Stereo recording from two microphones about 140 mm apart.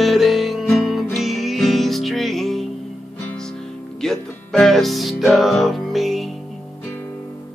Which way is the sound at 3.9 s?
5° left (ahead or behind).